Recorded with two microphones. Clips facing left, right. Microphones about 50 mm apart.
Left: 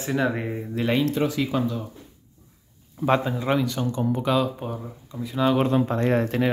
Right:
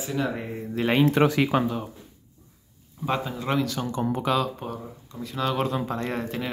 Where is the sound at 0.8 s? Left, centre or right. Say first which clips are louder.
Even; centre.